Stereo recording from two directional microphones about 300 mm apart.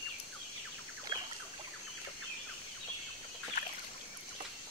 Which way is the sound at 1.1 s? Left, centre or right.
Centre.